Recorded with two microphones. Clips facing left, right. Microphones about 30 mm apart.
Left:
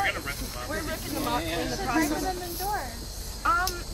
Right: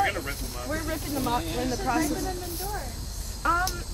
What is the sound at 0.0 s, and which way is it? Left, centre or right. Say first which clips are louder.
Speech: right 2 dB; centre.